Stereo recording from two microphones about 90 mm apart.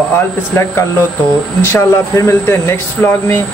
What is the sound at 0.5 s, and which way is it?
Speech, 30° left (ahead or behind).